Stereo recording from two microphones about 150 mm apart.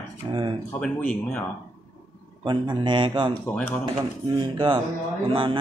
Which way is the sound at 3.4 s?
15° left (ahead or behind).